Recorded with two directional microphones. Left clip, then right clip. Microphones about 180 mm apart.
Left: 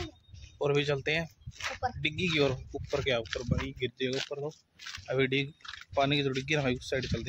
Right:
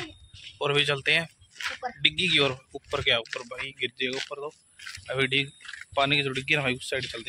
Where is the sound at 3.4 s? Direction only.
10° left (ahead or behind).